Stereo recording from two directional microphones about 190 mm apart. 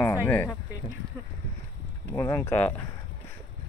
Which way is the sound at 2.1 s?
15° left (ahead or behind).